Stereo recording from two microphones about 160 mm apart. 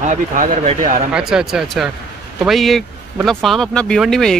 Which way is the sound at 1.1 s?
5° right (ahead or behind).